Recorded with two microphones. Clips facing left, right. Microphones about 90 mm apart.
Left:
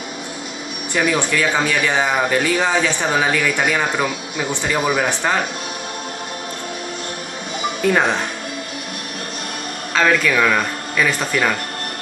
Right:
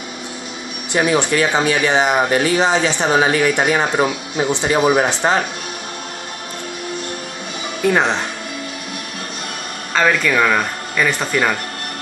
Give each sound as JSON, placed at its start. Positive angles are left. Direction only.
{"t": 0.9, "sound": "speech", "side_deg": -25}
{"t": 9.9, "sound": "speech", "side_deg": -5}